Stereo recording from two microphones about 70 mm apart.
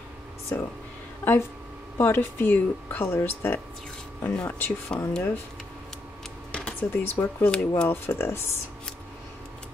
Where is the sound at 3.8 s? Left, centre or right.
Centre.